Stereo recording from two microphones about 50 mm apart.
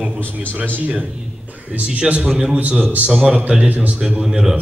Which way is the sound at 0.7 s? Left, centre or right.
Right.